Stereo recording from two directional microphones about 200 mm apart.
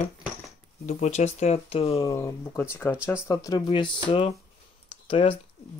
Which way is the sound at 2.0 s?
15° left (ahead or behind).